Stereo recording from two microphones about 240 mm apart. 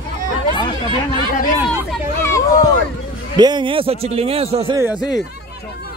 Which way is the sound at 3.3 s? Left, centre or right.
Centre.